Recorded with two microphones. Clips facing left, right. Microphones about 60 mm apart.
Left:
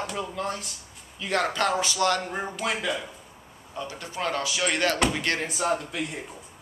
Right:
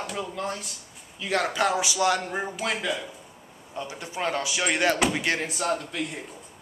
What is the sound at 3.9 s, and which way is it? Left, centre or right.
Speech, centre.